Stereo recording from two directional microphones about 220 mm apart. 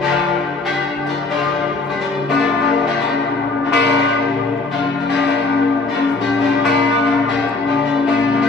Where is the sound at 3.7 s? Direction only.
50° left (ahead or behind).